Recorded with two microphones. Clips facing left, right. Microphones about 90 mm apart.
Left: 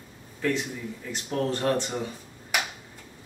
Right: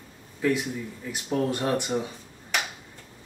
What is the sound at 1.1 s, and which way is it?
Speech, 10° right (ahead or behind).